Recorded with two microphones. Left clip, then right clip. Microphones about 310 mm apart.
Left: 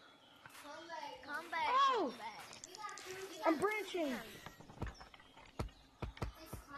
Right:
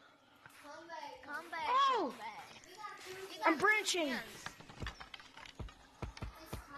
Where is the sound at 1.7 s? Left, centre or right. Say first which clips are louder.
Right 2 dB; centre.